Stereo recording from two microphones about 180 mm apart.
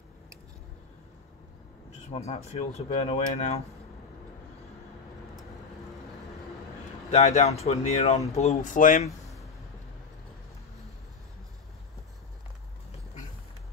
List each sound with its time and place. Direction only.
2.0 s speech: 35° left (ahead or behind)
7.1 s speech: 40° left (ahead or behind)